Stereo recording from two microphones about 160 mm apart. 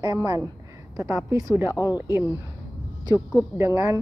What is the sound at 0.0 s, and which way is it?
Speech, 25° right (ahead or behind).